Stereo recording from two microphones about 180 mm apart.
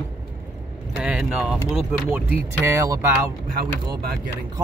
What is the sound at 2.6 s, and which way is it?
Speech, 15° right (ahead or behind).